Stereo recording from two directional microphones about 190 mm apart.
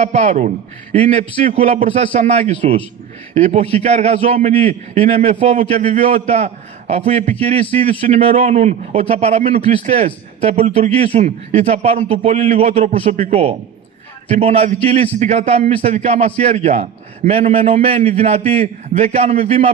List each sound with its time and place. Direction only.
0.0 s a man's voice: 35° right (ahead or behind)